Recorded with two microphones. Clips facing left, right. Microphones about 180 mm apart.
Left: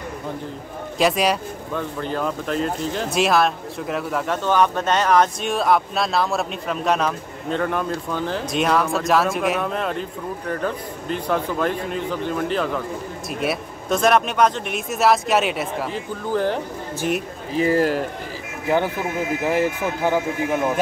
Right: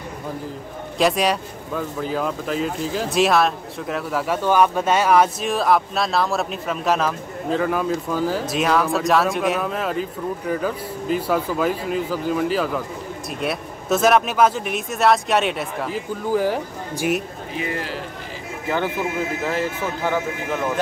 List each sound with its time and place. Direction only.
0.9 s speech: centre (ahead or behind)
17.6 s speech: 40° left (ahead or behind)
19.4 s speech: 15° left (ahead or behind)